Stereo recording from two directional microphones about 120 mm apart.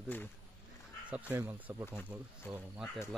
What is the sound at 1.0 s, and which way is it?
Speech, 10° right (ahead or behind).